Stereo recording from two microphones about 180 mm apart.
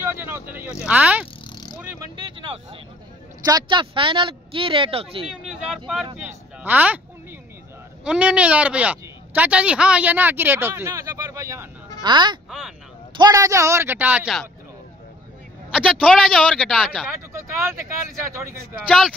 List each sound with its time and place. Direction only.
0.0 s vehicle: 10° right (ahead or behind)
1.2 s a sound: 20° left (ahead or behind)
2.1 s vehicle: 25° right (ahead or behind)
3.4 s speech: 25° right (ahead or behind)
5.3 s a man's voice: centre (ahead or behind)
6.1 s vehicle: 10° right (ahead or behind)
8.0 s a man's voice: 5° right (ahead or behind)
15.7 s a man's voice: centre (ahead or behind)
18.9 s a man's voice: centre (ahead or behind)